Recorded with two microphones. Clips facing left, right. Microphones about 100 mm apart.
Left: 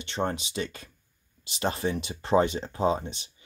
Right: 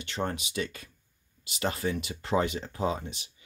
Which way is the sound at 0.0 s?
25° left (ahead or behind).